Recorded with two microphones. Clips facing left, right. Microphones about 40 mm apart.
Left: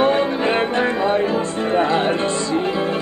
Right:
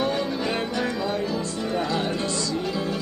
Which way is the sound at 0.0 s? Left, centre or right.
Left.